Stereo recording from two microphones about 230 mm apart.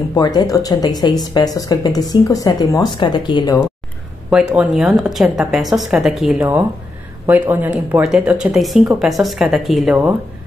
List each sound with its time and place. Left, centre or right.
0.1 s speech: centre
4.6 s a woman's voice: centre